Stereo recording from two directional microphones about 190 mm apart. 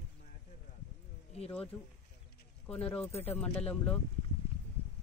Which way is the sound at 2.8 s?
30° left (ahead or behind).